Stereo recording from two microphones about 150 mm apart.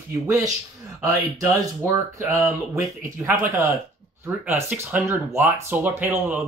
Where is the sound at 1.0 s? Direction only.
20° right (ahead or behind).